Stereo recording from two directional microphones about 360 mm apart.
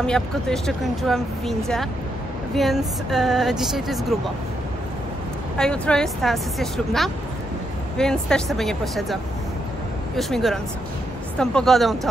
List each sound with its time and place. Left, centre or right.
0.0 s speech: centre
5.6 s speech: centre